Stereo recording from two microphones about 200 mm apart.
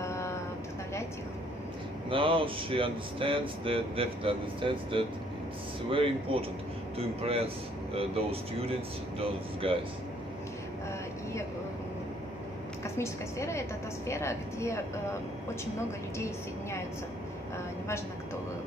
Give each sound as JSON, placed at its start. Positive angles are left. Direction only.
{"t": 0.0, "sound": "a sound", "side_deg": 15}
{"t": 2.0, "sound": "speech", "side_deg": -25}
{"t": 12.8, "sound": "a woman's voice", "side_deg": 15}